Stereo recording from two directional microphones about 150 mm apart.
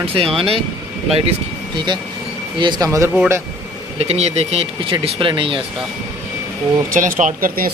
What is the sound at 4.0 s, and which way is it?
Speech, 45° right (ahead or behind).